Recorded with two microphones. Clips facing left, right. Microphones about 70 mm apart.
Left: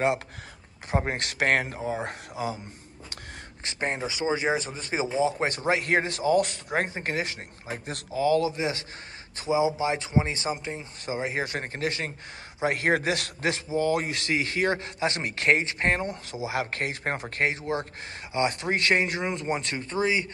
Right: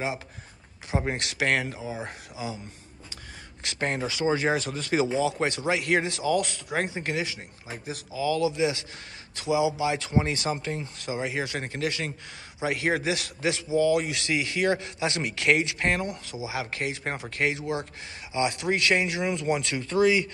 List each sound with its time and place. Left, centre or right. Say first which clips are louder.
1.0 s speech: right 1 dB; left
3.6 s speech: right 1 dB; centre
11.0 s speech: left 3 dB; left
16.3 s speech: left 3 dB; left